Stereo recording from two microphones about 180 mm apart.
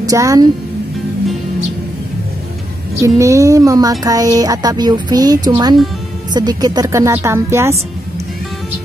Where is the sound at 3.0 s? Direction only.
15° right (ahead or behind).